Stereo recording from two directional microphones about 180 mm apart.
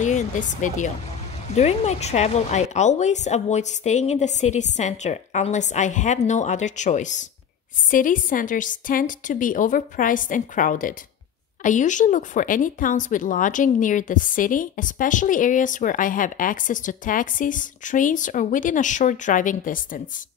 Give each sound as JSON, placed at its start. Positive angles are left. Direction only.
{"t": 0.0, "sound": "a woman's voice", "side_deg": 45}